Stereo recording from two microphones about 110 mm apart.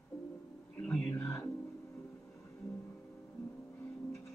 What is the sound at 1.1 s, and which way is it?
Music, 30° left (ahead or behind).